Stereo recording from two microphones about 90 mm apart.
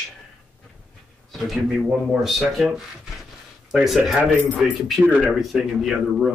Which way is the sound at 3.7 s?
Centre (ahead or behind).